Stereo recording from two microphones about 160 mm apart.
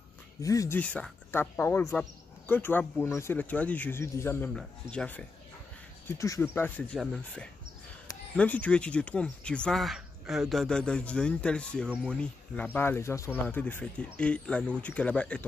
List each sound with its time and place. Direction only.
0.4 s speech: 20° left (ahead or behind)
0.7 s speech: 10° left (ahead or behind)
6.0 s speech: 20° left (ahead or behind)
7.0 s speech: centre (ahead or behind)